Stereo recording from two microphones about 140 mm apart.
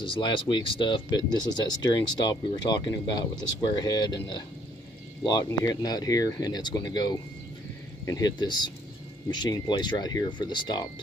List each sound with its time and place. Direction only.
0.0 s speech: 35° left (ahead or behind)